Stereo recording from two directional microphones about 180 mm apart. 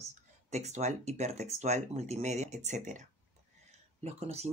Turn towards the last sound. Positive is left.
turn(degrees=-35)  # may be behind; listen again after turning